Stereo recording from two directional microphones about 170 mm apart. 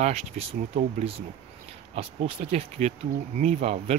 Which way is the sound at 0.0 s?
40° right (ahead or behind).